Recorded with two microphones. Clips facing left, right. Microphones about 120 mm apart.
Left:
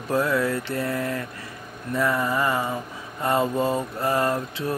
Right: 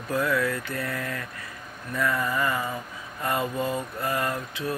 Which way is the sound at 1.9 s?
30° left (ahead or behind).